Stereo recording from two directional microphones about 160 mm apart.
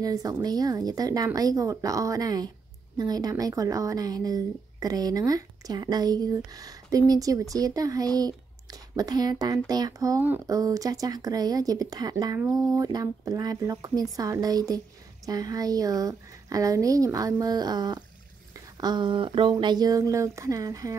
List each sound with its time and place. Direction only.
0.0 s speech: 20° right (ahead or behind)